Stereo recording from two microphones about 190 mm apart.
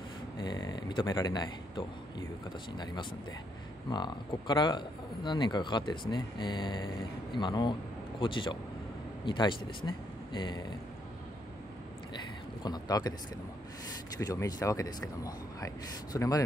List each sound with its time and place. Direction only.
0.4 s speech: 20° left (ahead or behind)
12.6 s speech: 20° left (ahead or behind)
14.1 s speech: 20° left (ahead or behind)